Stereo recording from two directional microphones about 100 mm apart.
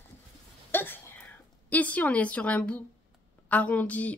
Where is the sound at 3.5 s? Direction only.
15° left (ahead or behind).